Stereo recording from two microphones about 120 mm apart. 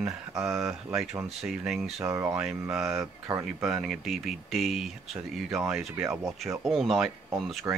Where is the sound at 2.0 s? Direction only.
20° right (ahead or behind).